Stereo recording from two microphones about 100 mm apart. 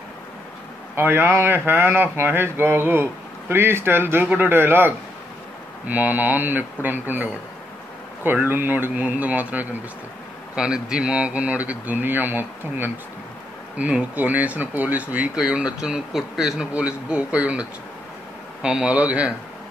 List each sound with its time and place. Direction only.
0.9 s speech: 20° right (ahead or behind)